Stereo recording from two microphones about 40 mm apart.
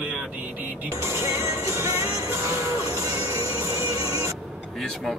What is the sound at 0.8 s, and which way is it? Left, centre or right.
Speech, right.